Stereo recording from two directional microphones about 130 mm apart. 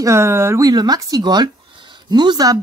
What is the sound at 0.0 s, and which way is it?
Speech, 20° right (ahead or behind).